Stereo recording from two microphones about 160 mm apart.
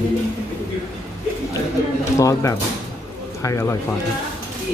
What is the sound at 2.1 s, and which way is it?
A man's voice, 20° left (ahead or behind).